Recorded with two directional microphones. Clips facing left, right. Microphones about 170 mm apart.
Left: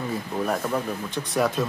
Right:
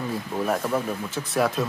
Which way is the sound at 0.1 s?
Centre (ahead or behind).